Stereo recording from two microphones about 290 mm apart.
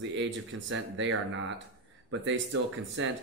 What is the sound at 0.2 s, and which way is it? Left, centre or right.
Speech, right.